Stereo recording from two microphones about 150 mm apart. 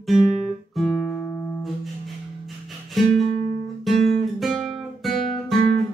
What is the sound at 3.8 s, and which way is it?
Guitar, centre (ahead or behind).